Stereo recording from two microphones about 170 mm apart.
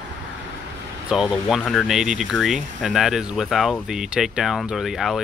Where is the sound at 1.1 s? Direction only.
Centre (ahead or behind).